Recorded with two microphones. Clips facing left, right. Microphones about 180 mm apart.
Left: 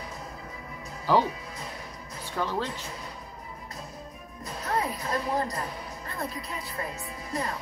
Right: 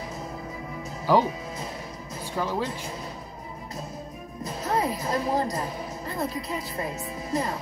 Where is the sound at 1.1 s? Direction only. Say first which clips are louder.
Right 2 dB; 10° right (ahead or behind).